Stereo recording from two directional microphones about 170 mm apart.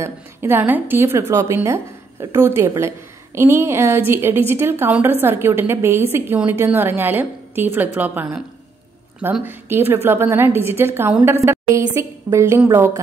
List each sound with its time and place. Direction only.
0.0 s a woman's voice: 15° right (ahead or behind)